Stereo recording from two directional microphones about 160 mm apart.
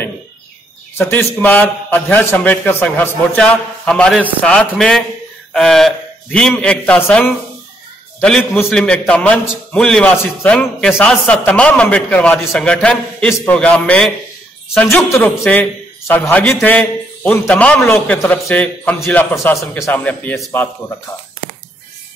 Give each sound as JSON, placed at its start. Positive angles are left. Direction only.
{"t": 0.9, "sound": "a man's voice", "side_deg": 10}